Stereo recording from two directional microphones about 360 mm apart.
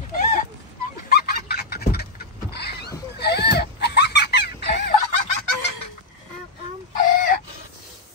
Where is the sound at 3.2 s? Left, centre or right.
Left.